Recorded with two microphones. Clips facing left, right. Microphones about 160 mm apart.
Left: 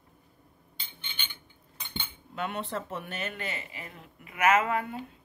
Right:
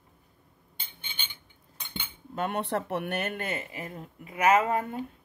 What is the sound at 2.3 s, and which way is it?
Speech, 50° right (ahead or behind).